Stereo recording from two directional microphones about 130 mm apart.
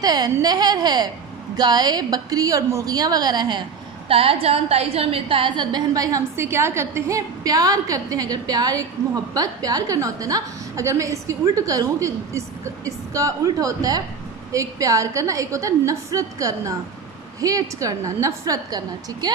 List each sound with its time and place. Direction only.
0.0 s a woman's voice: 30° right (ahead or behind)
4.1 s a woman's voice: 45° right (ahead or behind); by 18.8 s 25° right (ahead or behind)